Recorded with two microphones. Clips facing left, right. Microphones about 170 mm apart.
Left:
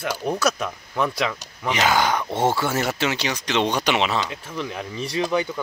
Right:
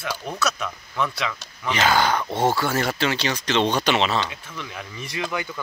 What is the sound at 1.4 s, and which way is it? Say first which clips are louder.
Speech: left 1 dB; 15° left (ahead or behind).